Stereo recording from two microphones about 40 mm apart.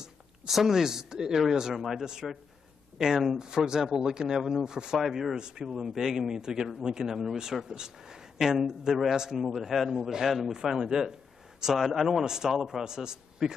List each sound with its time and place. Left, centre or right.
0.5 s speech: centre
3.3 s speech: centre